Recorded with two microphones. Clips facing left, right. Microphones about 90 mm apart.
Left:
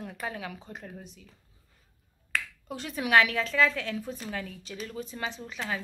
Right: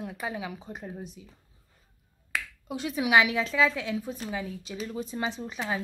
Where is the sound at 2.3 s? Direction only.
10° right (ahead or behind).